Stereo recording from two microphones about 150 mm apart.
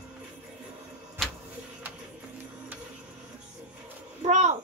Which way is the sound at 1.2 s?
Centre (ahead or behind).